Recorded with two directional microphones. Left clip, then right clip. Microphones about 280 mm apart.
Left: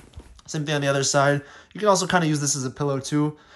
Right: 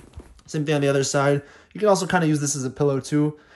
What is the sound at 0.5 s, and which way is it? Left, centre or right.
Speech, centre.